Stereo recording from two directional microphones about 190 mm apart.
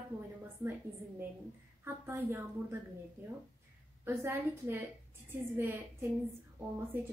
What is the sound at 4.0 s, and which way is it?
A woman's voice, 10° right (ahead or behind).